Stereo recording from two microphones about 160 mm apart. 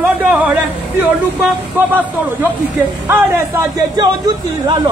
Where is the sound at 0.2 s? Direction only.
10° right (ahead or behind).